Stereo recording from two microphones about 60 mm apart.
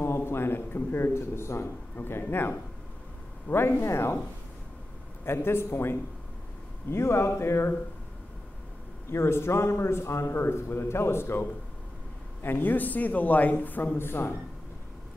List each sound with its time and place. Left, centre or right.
0.0 s a man's voice: left
5.2 s a man's voice: left
9.1 s a man's voice: left